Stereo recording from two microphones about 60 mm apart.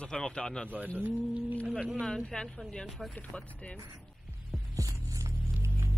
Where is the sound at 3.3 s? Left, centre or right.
Centre.